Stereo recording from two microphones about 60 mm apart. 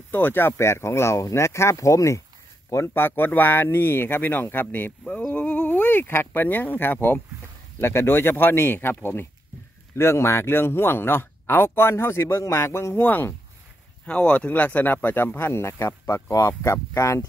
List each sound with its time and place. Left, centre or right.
0.1 s speech: left
2.9 s speech: left
9.9 s speech: left